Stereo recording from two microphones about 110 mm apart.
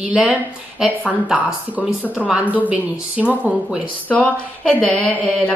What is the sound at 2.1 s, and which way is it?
Speech, 10° right (ahead or behind).